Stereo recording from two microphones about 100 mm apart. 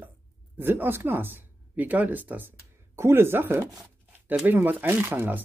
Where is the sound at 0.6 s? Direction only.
20° right (ahead or behind).